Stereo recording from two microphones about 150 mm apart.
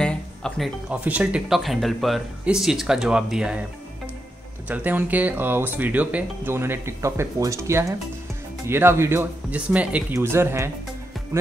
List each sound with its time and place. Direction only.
0.0 s music: 5° left (ahead or behind)
0.8 s speech: 10° right (ahead or behind)
4.6 s speech: 10° right (ahead or behind)